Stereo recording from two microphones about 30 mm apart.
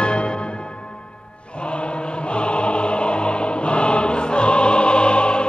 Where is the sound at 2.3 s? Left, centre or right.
Left.